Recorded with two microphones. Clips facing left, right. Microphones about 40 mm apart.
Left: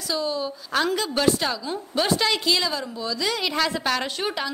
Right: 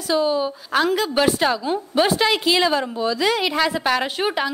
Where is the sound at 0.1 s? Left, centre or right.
Right.